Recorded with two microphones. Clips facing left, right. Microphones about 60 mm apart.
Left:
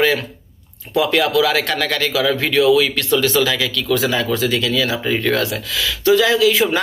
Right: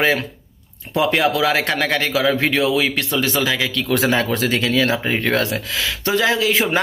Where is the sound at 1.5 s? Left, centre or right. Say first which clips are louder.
Even; centre.